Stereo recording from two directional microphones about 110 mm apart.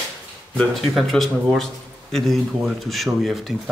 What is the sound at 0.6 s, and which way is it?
Speech, centre (ahead or behind).